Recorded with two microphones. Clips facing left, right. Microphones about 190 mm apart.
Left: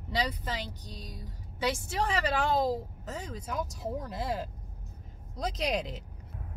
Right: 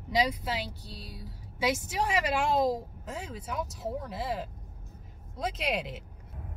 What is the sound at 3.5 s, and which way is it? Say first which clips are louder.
Speech: even; 5° right (ahead or behind).